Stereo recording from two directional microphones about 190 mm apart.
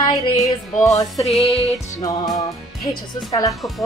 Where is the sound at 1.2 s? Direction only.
Centre (ahead or behind).